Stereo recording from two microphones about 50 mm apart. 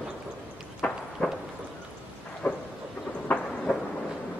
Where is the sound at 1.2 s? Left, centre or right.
Centre.